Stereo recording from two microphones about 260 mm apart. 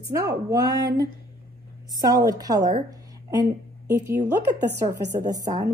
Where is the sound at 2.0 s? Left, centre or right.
Centre.